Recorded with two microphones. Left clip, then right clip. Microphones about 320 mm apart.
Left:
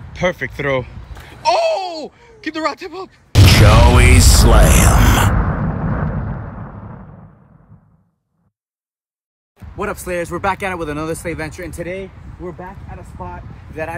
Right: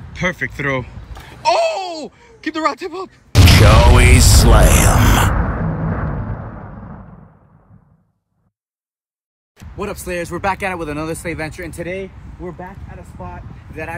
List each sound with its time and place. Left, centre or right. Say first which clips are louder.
0.1 s a sound: left 2 dB; centre
9.8 s speech: left 2 dB; centre
13.2 s speech: left 2 dB; centre